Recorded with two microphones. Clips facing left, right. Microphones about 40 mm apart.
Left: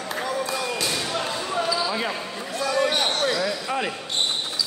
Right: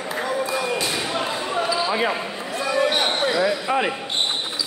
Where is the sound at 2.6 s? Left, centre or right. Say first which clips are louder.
Right 2 dB; right.